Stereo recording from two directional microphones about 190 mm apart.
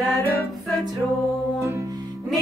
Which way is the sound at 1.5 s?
15° right (ahead or behind).